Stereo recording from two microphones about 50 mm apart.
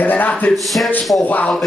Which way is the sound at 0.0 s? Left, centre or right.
Left.